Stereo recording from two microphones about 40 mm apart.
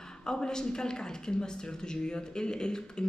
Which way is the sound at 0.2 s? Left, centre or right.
Centre.